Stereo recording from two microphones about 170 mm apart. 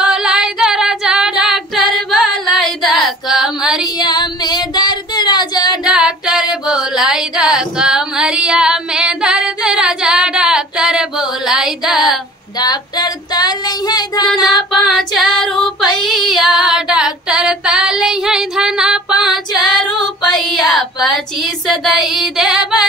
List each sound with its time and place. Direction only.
0.0 s female singing: 5° right (ahead or behind)
3.8 s child singing: 25° left (ahead or behind)
5.9 s singing: 5° right (ahead or behind)
6.6 s a sound: 5° right (ahead or behind)
12.5 s female singing: 25° left (ahead or behind)
14.9 s female singing: centre (ahead or behind)
15.4 s child singing: 5° left (ahead or behind)
16.6 s female singing: 5° right (ahead or behind)